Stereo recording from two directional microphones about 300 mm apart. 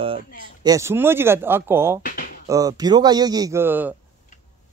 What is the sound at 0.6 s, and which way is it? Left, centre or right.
A man's voice, centre.